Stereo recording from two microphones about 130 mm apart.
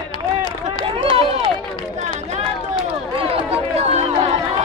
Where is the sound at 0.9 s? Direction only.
45° right (ahead or behind).